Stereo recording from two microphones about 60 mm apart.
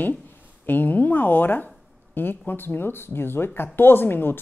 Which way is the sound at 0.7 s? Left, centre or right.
Left.